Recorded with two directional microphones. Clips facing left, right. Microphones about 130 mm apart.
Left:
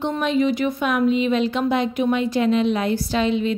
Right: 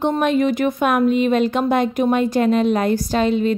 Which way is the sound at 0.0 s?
50° right (ahead or behind).